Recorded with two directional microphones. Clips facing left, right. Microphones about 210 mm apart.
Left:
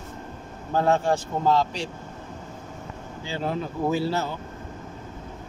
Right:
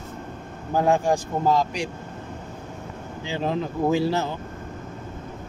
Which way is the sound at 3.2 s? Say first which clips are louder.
Right 3 dB; 15° right (ahead or behind).